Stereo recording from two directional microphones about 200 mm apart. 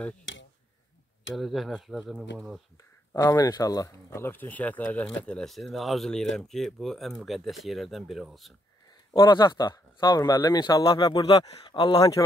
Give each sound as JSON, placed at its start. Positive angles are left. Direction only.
{"t": 0.2, "sound": "speech", "side_deg": 70}
{"t": 1.3, "sound": "speech", "side_deg": 0}
{"t": 3.1, "sound": "speech", "side_deg": 15}
{"t": 9.1, "sound": "speech", "side_deg": 25}